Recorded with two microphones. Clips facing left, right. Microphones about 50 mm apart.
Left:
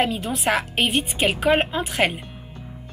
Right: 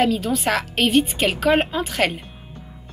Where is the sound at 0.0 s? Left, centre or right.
Left.